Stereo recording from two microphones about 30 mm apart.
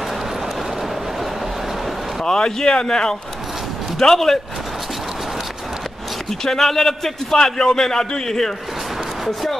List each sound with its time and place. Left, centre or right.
2.2 s speech: left
4.0 s a man's voice: centre
6.4 s a man's voice: centre